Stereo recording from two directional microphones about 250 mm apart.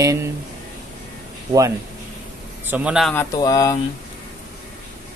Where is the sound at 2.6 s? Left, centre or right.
Centre.